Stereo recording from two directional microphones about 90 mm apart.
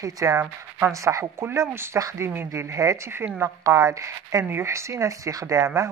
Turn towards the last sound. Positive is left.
turn(degrees=-35)  # may be behind; listen again after turning